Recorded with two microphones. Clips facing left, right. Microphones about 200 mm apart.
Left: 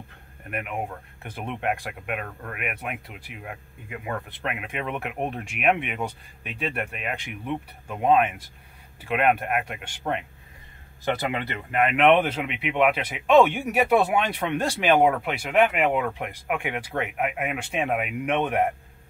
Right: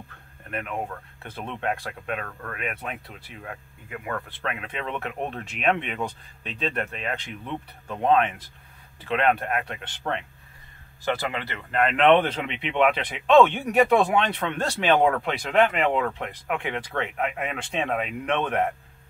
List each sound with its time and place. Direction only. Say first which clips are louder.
0.5 s speech: even; 15° left (ahead or behind)